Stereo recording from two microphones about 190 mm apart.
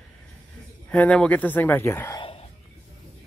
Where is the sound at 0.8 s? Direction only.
5° left (ahead or behind).